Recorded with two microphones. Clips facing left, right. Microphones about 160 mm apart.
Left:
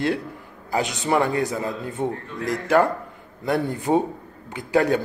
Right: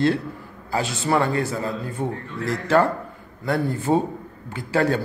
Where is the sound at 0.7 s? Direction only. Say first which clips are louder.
Even; 20° left (ahead or behind).